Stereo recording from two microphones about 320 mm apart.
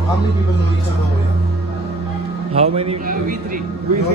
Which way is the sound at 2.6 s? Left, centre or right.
Centre.